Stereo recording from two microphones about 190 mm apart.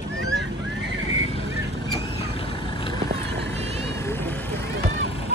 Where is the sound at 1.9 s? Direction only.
25° left (ahead or behind).